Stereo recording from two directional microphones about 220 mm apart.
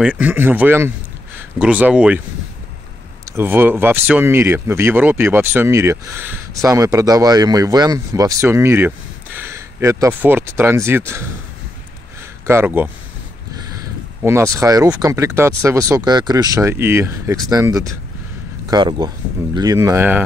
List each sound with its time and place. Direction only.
0.0 s a man's voice: 5° right (ahead or behind)
3.3 s speech: 10° right (ahead or behind)
12.4 s speech: 10° right (ahead or behind)
14.2 s speech: 15° right (ahead or behind)